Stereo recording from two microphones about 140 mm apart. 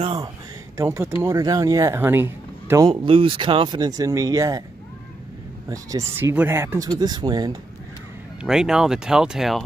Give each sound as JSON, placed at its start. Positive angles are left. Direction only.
{"t": 0.7, "sound": "speech", "side_deg": -20}
{"t": 2.8, "sound": "speech", "side_deg": -35}
{"t": 5.7, "sound": "speech", "side_deg": -25}
{"t": 8.4, "sound": "speech", "side_deg": -5}